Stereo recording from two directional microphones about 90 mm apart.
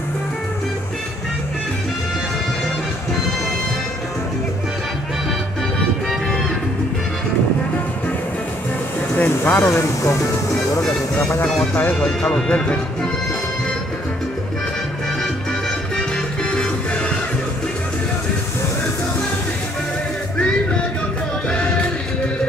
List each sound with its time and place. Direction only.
9.1 s speech: 20° left (ahead or behind)
12.0 s speech: 5° left (ahead or behind)